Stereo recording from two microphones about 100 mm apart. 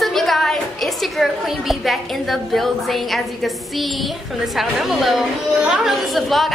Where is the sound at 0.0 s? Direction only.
Centre (ahead or behind).